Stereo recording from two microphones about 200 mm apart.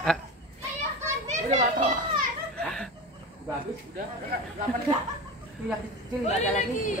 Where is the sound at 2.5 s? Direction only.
5° left (ahead or behind).